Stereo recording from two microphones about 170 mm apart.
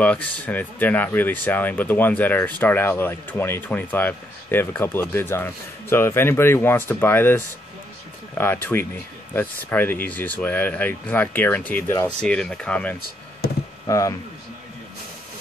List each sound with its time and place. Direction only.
0.0 s speech: 10° left (ahead or behind)
13.8 s speech: 20° left (ahead or behind)